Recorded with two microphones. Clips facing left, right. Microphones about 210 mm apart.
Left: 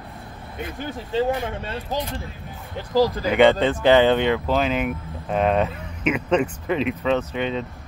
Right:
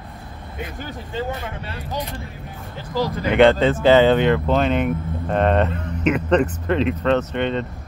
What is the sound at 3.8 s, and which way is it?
Speech, 15° left (ahead or behind).